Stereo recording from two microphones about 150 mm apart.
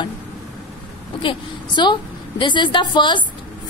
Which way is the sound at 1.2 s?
35° left (ahead or behind).